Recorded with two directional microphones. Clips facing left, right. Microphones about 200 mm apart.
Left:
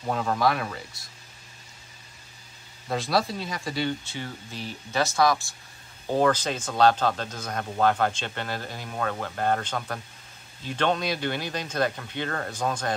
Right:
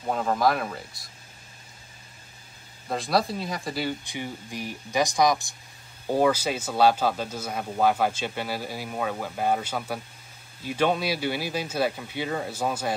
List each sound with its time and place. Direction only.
0.1 s speech: centre (ahead or behind)
2.9 s speech: centre (ahead or behind)
4.0 s speech: 15° right (ahead or behind)